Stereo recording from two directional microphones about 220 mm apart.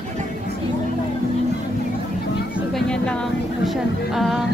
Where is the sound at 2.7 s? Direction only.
5° left (ahead or behind).